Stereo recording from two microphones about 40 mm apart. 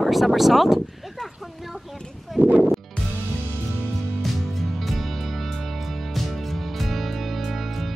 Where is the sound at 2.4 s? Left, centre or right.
Right.